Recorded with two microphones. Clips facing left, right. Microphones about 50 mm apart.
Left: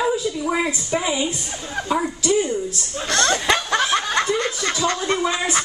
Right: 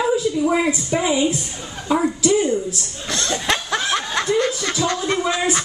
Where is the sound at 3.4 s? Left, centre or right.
Centre.